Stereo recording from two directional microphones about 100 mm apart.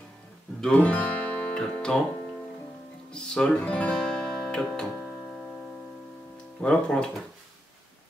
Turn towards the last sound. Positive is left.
turn(degrees=10)  # may be behind; listen again after turning